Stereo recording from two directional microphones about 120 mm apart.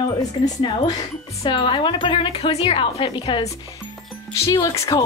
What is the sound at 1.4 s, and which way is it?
A woman's voice, 45° left (ahead or behind).